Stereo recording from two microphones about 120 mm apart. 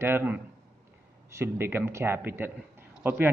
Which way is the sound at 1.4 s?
20° right (ahead or behind).